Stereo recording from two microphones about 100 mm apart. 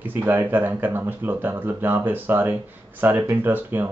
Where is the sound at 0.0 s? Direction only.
20° right (ahead or behind).